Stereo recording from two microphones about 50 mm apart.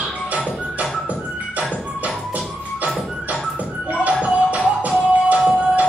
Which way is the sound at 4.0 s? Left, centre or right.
Right.